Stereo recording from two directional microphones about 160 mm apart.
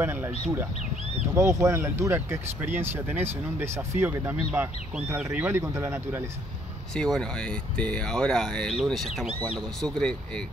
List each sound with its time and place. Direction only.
0.0 s speech: 15° right (ahead or behind)
1.3 s speech: 20° right (ahead or behind)
6.9 s speech: 5° left (ahead or behind)